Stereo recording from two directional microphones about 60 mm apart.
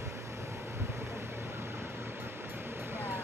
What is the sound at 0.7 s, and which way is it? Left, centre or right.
Vehicle, right.